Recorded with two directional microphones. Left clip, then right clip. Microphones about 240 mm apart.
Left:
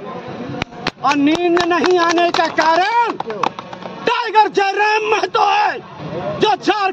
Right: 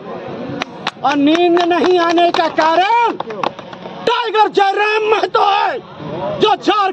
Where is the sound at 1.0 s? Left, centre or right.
Centre.